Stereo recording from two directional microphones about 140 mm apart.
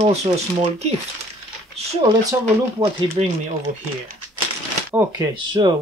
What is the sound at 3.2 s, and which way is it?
Speech, 50° right (ahead or behind).